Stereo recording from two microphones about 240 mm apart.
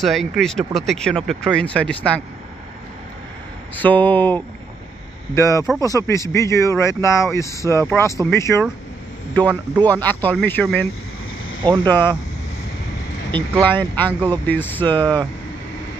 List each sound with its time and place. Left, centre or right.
0.0 s speech: centre
3.7 s speech: centre
9.8 s speech: centre
13.3 s speech: centre
14.9 s speech: centre